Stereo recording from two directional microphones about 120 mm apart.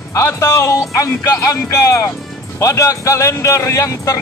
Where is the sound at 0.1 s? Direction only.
25° left (ahead or behind).